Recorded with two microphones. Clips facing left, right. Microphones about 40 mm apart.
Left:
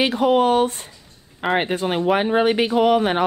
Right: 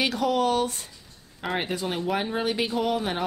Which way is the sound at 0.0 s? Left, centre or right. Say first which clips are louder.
Left 7 dB; left.